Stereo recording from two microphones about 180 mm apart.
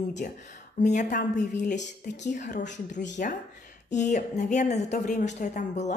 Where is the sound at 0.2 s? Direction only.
50° left (ahead or behind).